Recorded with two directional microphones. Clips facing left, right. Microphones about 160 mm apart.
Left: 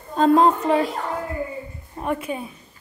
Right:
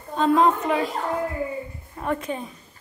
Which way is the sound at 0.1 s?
40° left (ahead or behind).